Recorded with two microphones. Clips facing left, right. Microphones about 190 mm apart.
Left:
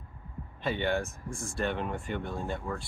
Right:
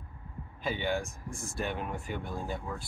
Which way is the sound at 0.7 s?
Centre (ahead or behind).